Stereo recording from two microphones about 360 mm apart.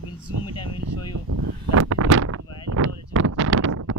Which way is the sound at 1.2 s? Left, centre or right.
Right.